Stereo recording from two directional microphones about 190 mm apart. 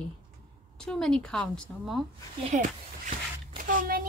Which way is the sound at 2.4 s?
40° right (ahead or behind).